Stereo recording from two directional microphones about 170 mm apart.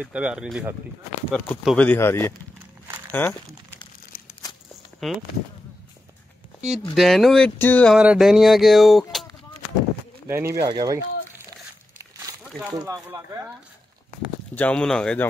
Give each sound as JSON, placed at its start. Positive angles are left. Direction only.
{"t": 0.0, "sound": "speech", "side_deg": -5}
{"t": 5.0, "sound": "speech", "side_deg": 0}
{"t": 6.8, "sound": "speech", "side_deg": 0}
{"t": 7.9, "sound": "speech", "side_deg": -5}
{"t": 10.2, "sound": "speech", "side_deg": -15}
{"t": 12.7, "sound": "speech", "side_deg": -20}
{"t": 14.5, "sound": "speech", "side_deg": 10}